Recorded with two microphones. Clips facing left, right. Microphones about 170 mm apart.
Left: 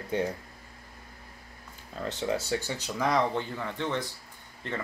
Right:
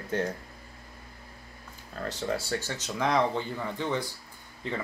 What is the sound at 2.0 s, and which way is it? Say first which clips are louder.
Speech: left 1 dB; 20° left (ahead or behind).